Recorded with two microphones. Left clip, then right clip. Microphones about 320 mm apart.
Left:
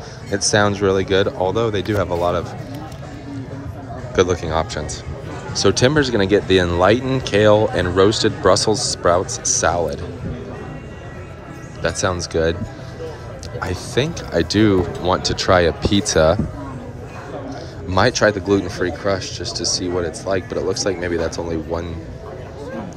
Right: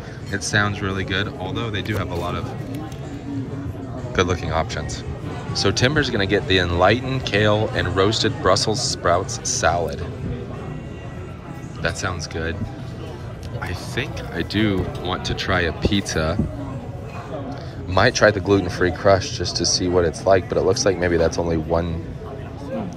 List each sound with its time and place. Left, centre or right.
0.3 s speech: centre
4.1 s speech: centre
11.8 s speech: centre
13.6 s speech: centre
17.9 s speech: centre